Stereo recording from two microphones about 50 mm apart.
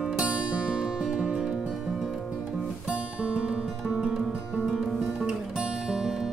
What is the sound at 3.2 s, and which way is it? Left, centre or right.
Music, right.